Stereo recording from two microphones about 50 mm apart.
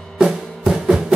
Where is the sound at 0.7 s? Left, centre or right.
Right.